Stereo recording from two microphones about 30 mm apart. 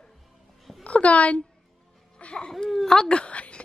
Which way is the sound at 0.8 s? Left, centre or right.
Left.